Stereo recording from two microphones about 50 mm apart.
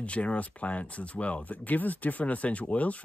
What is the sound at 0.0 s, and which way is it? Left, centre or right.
Speech, left.